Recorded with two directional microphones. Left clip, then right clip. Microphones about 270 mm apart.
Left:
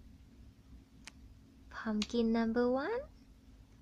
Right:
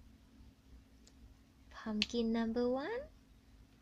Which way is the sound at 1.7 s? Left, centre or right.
Centre.